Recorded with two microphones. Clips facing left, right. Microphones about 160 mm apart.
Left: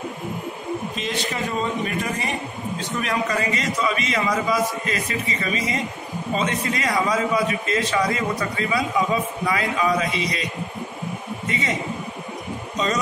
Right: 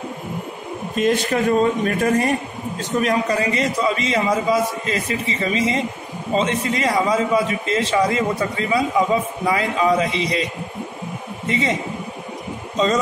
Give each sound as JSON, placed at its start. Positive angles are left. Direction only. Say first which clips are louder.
{"t": 0.9, "sound": "a man's voice", "louder": "right 8 dB", "side_deg": -50}
{"t": 11.4, "sound": "a man's voice", "louder": "right 6 dB", "side_deg": -30}
{"t": 12.7, "sound": "speech", "louder": "right 5 dB", "side_deg": -25}